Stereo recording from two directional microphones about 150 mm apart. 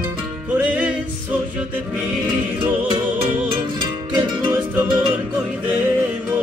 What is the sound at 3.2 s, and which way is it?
Music, 10° right (ahead or behind).